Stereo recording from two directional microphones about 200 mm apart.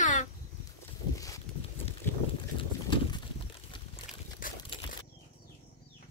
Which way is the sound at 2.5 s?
25° left (ahead or behind).